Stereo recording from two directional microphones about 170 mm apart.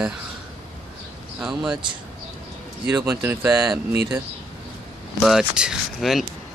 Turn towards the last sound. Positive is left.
turn(degrees=0)  # may be behind; listen again after turning